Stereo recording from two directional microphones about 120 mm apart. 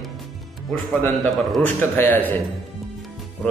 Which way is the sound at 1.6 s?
15° left (ahead or behind).